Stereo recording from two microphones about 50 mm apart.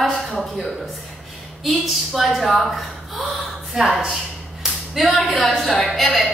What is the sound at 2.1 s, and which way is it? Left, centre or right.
A woman's voice, centre.